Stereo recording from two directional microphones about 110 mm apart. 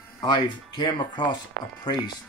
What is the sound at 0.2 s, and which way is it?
Speech, 45° left (ahead or behind).